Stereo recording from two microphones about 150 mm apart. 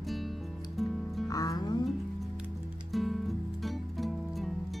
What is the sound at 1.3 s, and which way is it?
Music, 25° left (ahead or behind).